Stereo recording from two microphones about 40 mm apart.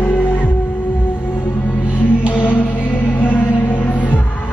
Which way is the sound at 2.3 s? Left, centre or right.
Left.